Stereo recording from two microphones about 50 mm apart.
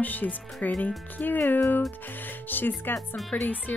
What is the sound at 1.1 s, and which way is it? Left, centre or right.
Speech, left.